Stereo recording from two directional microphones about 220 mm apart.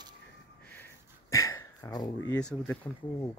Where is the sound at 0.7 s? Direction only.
10° left (ahead or behind).